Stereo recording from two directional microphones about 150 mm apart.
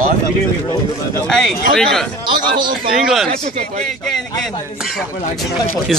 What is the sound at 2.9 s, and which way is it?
Speech, centre (ahead or behind).